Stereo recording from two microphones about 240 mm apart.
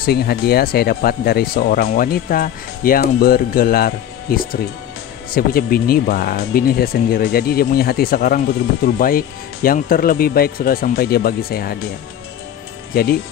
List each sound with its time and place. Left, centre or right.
0.0 s speech: left
12.9 s speech: left